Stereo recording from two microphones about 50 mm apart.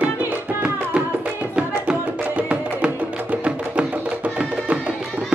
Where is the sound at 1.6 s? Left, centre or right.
Right.